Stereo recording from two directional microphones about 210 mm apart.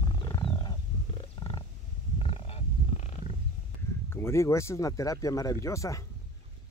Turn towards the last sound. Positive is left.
turn(degrees=15)  # may be behind; listen again after turning